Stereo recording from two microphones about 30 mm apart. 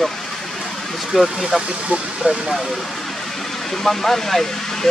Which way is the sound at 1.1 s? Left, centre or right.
Centre.